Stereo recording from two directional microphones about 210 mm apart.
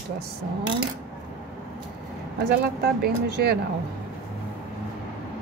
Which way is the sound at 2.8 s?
50° right (ahead or behind).